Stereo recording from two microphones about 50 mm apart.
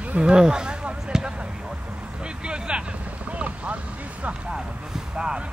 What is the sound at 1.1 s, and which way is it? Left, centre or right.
Basketball bounce, centre.